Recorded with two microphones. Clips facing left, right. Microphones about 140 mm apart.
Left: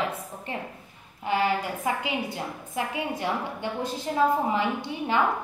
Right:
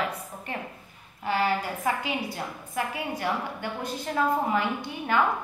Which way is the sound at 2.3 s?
20° left (ahead or behind).